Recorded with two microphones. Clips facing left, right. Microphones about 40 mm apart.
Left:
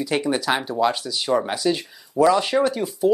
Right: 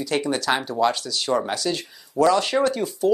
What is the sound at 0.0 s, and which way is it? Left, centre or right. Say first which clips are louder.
Speech: left 1 dB; centre.